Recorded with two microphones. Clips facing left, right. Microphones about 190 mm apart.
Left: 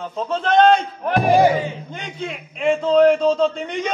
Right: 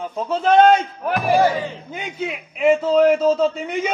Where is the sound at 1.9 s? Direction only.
10° right (ahead or behind).